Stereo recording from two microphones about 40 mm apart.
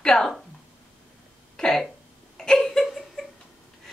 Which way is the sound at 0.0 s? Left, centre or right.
Centre.